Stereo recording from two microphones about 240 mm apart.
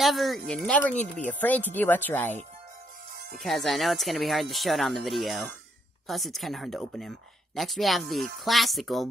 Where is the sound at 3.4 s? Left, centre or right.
Centre.